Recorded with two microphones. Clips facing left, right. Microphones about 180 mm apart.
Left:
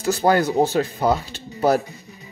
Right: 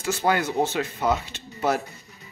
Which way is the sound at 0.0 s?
40° left (ahead or behind).